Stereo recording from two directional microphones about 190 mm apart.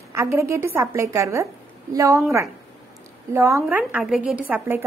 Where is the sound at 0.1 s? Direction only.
15° right (ahead or behind).